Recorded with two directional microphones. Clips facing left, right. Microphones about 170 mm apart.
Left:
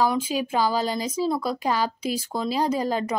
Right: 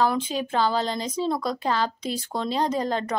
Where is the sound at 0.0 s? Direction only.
10° left (ahead or behind).